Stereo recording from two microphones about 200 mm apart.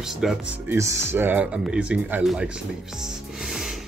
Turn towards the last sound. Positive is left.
turn(degrees=0)  # may be behind; listen again after turning